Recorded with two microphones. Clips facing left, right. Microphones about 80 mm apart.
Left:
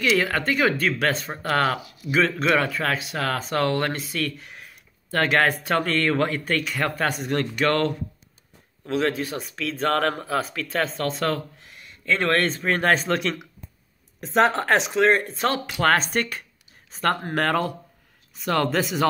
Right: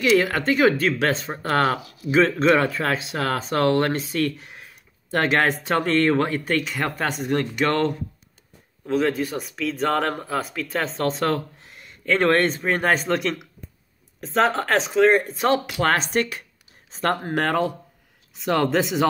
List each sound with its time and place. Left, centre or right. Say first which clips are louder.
0.0 s speech: right 3 dB; right
8.8 s speech: right 2 dB; centre
11.0 s speech: right 2 dB; right